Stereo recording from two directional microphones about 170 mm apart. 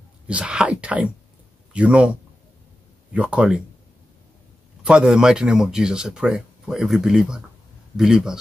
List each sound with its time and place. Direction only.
0.3 s speech: 5° right (ahead or behind)
4.8 s speech: 5° right (ahead or behind)